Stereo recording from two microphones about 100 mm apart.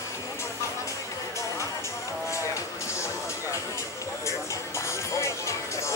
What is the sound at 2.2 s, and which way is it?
Music, 30° left (ahead or behind).